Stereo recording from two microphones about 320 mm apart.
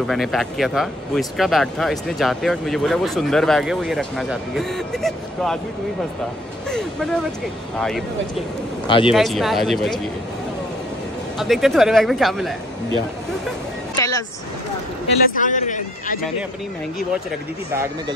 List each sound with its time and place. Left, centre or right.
0.0 s speech: centre
8.8 s speech: centre
9.1 s speech: centre
11.3 s speech: centre
13.9 s a sound: centre
15.2 s a man's voice: left